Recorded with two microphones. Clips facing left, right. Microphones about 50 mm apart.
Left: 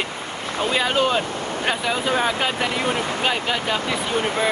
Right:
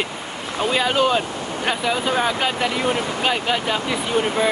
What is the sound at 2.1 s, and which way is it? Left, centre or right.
Speech, centre.